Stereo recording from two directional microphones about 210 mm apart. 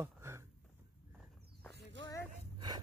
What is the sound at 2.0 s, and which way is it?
Dog, 60° right (ahead or behind).